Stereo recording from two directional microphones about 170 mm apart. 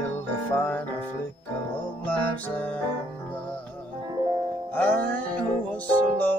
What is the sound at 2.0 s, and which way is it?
Music, 10° left (ahead or behind).